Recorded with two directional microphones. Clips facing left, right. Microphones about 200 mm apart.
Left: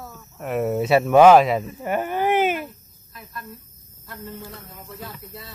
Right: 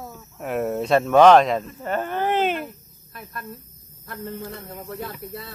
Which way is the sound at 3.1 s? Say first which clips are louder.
Right 2 dB; 55° right (ahead or behind).